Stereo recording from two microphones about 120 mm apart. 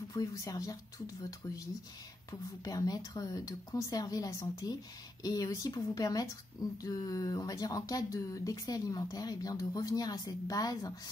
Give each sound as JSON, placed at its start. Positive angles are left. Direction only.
{"t": 0.1, "sound": "speech", "side_deg": 30}
{"t": 2.6, "sound": "speech", "side_deg": 30}